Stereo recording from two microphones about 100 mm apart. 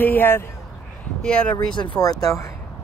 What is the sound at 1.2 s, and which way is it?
Speech, 5° left (ahead or behind).